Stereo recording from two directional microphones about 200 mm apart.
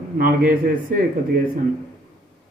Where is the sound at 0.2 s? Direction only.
45° right (ahead or behind).